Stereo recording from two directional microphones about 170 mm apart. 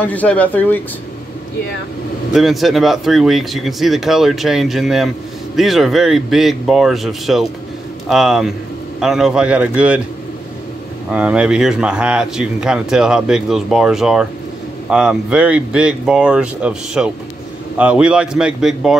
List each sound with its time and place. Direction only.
0.0 s speech: 10° left (ahead or behind)
2.3 s speech: centre (ahead or behind)
11.1 s speech: 5° right (ahead or behind)